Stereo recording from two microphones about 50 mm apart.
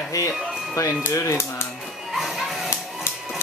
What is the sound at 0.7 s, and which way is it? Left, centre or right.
Speech, left.